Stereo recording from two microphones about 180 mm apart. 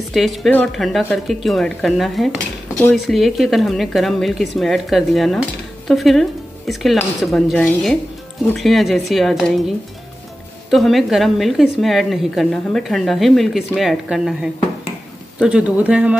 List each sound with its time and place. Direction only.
0.1 s a woman's voice: centre (ahead or behind)
10.7 s a woman's voice: centre (ahead or behind)